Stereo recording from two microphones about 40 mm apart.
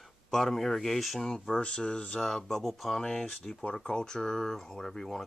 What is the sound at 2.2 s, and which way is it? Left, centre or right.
Speech, centre.